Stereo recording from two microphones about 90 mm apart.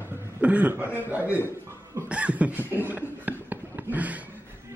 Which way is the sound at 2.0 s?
15° right (ahead or behind).